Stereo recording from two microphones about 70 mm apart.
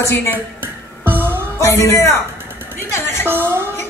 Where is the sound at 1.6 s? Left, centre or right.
Left.